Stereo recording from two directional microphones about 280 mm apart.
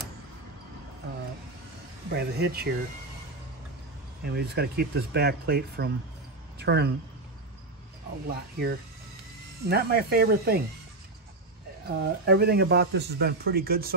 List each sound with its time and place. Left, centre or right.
2.1 s speech: right
4.2 s speech: right
8.3 s speech: right
12.0 s speech: right